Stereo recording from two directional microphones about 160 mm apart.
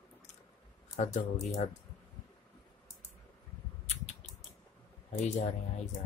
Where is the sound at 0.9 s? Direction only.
45° left (ahead or behind).